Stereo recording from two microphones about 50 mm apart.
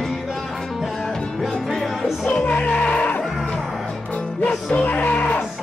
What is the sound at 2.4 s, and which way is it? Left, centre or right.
Music, left.